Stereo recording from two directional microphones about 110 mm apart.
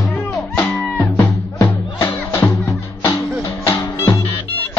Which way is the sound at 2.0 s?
35° left (ahead or behind).